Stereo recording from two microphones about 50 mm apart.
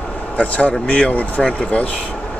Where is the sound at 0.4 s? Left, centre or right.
Left.